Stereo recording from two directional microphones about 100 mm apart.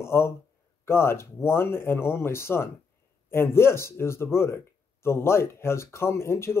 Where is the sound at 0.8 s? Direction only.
25° left (ahead or behind).